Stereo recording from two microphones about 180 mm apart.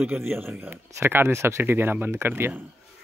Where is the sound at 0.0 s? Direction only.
10° right (ahead or behind).